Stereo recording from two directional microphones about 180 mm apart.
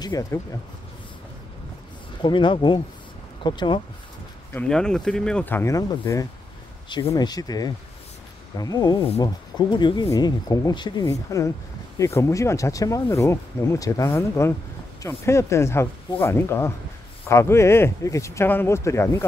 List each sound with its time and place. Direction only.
0.0 s speech: 20° left (ahead or behind)
2.2 s speech: 25° left (ahead or behind)
4.5 s speech: 5° left (ahead or behind)